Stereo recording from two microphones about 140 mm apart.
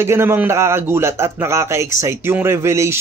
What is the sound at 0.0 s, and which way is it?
Speech, 15° right (ahead or behind).